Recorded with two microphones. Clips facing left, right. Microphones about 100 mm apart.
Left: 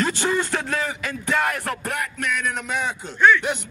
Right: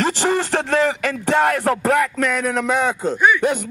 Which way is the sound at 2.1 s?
35° right (ahead or behind).